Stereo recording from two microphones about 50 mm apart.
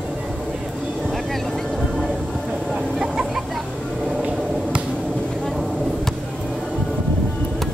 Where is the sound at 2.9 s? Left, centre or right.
Centre.